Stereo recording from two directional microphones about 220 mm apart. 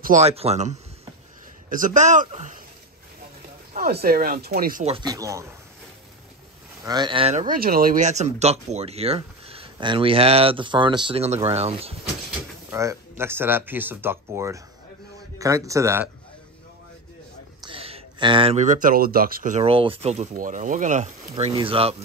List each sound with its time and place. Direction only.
0.0 s speech: 30° right (ahead or behind)
3.7 s speech: 40° right (ahead or behind)
4.8 s speech: 20° right (ahead or behind)
6.8 s speech: 20° right (ahead or behind)
12.7 s speech: 10° right (ahead or behind)
17.6 s speech: 25° right (ahead or behind)